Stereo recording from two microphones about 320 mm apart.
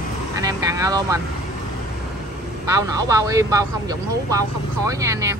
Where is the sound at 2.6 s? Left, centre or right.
Centre.